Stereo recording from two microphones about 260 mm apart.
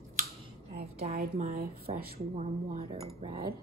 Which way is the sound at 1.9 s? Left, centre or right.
Right.